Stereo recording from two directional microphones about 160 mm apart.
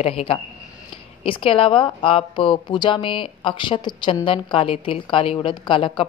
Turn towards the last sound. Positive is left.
turn(degrees=30)  # may be behind; listen again after turning